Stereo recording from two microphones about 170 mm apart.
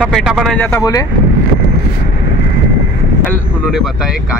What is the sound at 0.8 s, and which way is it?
Speech, 20° left (ahead or behind).